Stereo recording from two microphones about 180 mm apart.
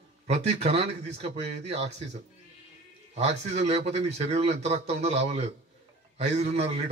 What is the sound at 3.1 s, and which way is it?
A man's voice, 35° right (ahead or behind).